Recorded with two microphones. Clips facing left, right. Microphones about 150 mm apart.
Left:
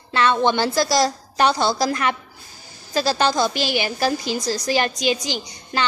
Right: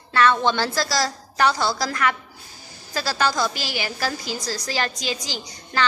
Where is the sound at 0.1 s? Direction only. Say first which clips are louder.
Left 1 dB; 20° left (ahead or behind).